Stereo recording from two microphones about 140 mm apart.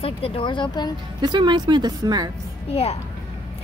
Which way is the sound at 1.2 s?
30° right (ahead or behind).